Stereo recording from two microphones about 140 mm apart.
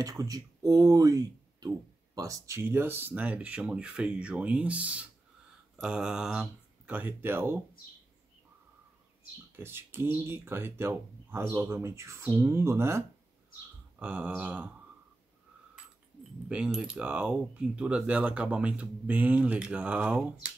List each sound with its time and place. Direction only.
0.0 s speech: 25° right (ahead or behind)
9.6 s speech: 15° right (ahead or behind)
16.4 s speech: 5° right (ahead or behind)